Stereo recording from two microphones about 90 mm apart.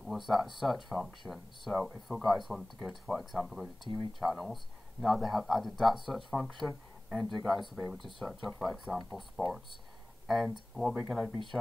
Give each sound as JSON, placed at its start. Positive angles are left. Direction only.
{"t": 0.3, "sound": "speech", "side_deg": 0}